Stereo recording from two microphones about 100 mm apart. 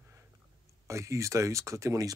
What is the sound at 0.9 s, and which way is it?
Speech, 30° right (ahead or behind).